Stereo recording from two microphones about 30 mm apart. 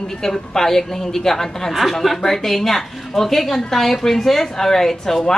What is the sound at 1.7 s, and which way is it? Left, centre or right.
A woman's voice, centre.